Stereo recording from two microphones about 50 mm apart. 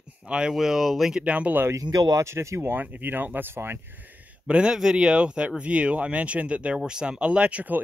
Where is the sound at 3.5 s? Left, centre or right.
Right.